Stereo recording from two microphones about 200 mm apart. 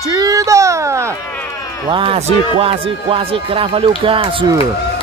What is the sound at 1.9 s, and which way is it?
Speech, 25° right (ahead or behind).